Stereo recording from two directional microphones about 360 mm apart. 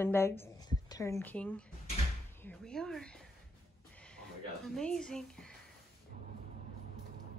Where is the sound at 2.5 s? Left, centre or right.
Centre.